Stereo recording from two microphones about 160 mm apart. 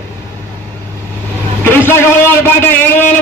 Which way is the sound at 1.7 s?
15° left (ahead or behind).